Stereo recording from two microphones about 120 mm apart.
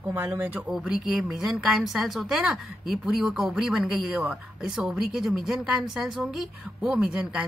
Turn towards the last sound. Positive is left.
turn(degrees=-10)  # may be behind; listen again after turning